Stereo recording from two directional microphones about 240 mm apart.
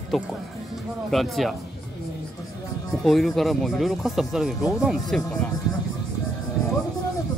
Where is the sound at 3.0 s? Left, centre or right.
Centre.